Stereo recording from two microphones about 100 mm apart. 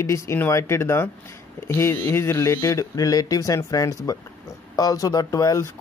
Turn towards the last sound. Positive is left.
turn(degrees=35)  # may be behind; listen again after turning